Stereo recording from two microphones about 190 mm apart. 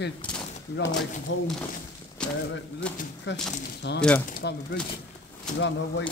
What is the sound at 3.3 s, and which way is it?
Speech, 70° left (ahead or behind).